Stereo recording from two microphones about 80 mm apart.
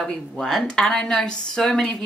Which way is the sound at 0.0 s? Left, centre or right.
Centre.